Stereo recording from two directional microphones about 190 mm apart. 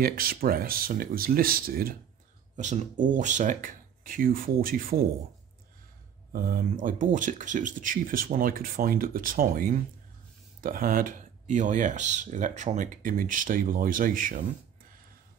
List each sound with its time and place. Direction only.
0.0 s speech: 50° right (ahead or behind)
2.5 s speech: 40° right (ahead or behind)
6.3 s speech: 50° right (ahead or behind)